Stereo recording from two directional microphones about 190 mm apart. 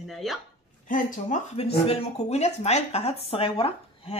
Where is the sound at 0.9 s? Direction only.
45° left (ahead or behind).